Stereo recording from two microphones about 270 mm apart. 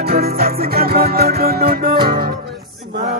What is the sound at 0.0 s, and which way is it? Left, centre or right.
Music, right.